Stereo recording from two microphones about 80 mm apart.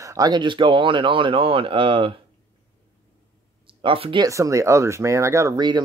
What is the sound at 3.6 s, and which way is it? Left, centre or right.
Speech, right.